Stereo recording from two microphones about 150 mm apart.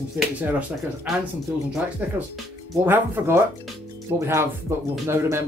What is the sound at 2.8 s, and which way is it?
Speech, 15° right (ahead or behind).